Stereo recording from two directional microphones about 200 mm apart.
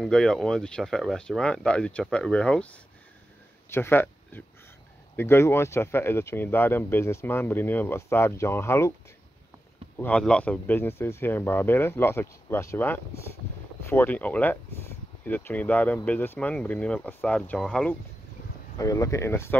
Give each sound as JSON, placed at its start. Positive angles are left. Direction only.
{"t": 0.0, "sound": "speech", "side_deg": 0}
{"t": 9.9, "sound": "speech", "side_deg": 5}
{"t": 18.8, "sound": "speech", "side_deg": 15}